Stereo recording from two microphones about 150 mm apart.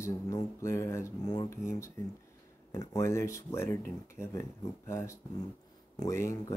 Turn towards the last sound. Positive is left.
turn(degrees=20)  # may be behind; listen again after turning